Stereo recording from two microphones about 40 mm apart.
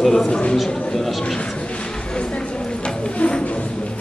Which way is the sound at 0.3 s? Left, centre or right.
Left.